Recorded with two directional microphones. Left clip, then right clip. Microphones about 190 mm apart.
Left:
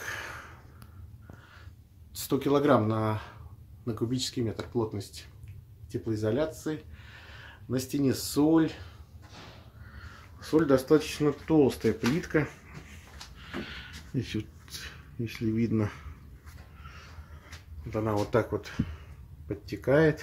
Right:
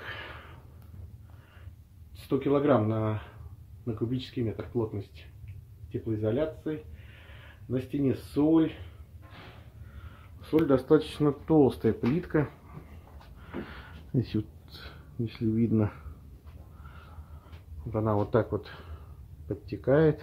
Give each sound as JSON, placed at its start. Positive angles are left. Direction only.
{"t": 0.0, "sound": "a sound", "side_deg": 5}
{"t": 2.2, "sound": "speech", "side_deg": 5}
{"t": 10.4, "sound": "speech", "side_deg": 0}
{"t": 11.1, "sound": "speech", "side_deg": -10}
{"t": 13.7, "sound": "a sound", "side_deg": -25}
{"t": 15.2, "sound": "speech", "side_deg": -5}
{"t": 17.9, "sound": "speech", "side_deg": -5}